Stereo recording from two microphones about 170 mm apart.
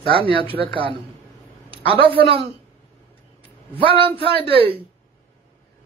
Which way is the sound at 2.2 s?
30° right (ahead or behind).